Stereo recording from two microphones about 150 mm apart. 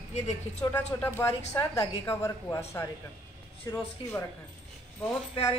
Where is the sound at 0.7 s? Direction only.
15° left (ahead or behind).